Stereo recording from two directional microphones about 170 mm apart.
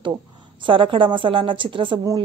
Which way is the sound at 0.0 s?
30° right (ahead or behind).